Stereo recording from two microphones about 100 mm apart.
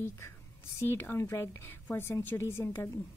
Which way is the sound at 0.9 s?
20° left (ahead or behind).